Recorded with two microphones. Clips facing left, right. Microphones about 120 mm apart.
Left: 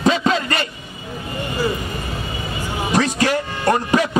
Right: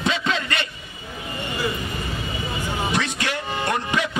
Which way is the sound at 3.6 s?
40° left (ahead or behind).